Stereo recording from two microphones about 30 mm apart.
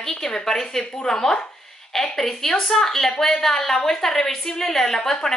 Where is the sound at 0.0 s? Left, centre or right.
Centre.